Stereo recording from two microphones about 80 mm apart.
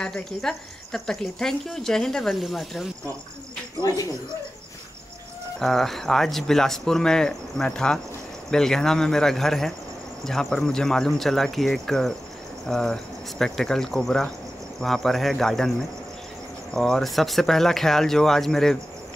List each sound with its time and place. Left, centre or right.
0.0 s speech: centre
3.8 s speech: left
5.6 s speech: centre
16.7 s speech: centre